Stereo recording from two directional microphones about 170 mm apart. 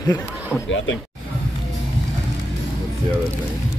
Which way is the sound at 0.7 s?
90° left.